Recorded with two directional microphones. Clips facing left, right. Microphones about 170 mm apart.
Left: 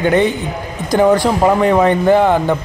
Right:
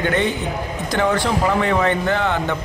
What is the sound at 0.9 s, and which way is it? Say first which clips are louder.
Speech: left 8 dB; 40° left (ahead or behind).